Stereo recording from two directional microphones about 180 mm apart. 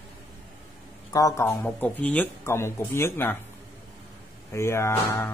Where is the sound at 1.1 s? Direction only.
20° left (ahead or behind).